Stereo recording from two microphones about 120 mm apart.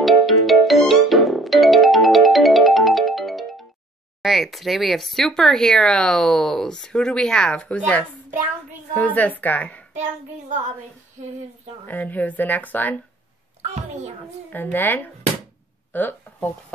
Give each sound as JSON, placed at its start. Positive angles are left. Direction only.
{"t": 0.0, "sound": "music", "side_deg": 0}
{"t": 4.2, "sound": "a woman's voice", "side_deg": 0}
{"t": 11.8, "sound": "a woman's voice", "side_deg": 15}
{"t": 13.6, "sound": "a sound", "side_deg": -70}
{"t": 14.5, "sound": "a woman's voice", "side_deg": 15}